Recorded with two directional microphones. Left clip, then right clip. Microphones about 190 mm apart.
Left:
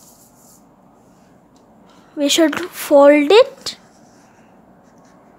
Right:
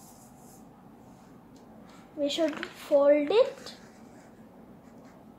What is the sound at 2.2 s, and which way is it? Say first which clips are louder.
Speech: left 13 dB; 45° left (ahead or behind).